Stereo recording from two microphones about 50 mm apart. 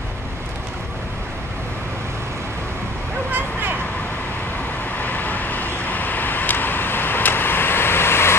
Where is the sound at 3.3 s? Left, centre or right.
Right.